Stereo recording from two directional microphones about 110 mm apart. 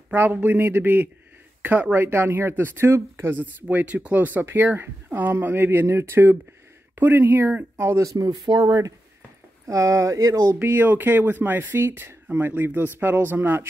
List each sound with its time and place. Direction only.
0.1 s a man's voice: 15° right (ahead or behind)
8.3 s speech: 40° right (ahead or behind)
10.7 s speech: 20° right (ahead or behind)